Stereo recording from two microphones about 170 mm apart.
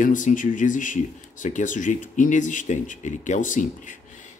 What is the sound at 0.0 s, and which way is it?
Speech, 50° left (ahead or behind).